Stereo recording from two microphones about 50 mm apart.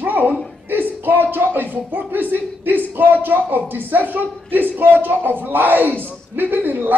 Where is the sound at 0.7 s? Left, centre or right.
Right.